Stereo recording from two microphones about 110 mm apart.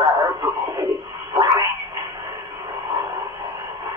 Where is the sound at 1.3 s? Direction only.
35° right (ahead or behind).